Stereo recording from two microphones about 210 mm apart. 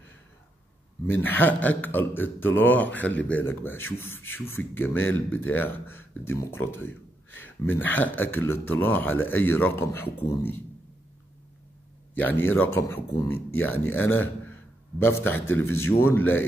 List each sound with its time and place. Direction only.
1.0 s a man's voice: 10° left (ahead or behind)
12.2 s a man's voice: 10° left (ahead or behind)